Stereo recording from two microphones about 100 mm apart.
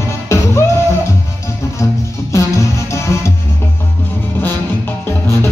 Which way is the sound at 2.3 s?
30° left (ahead or behind).